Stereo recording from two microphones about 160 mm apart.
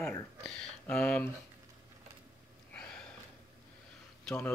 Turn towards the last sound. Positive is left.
turn(degrees=10)  # may be behind; listen again after turning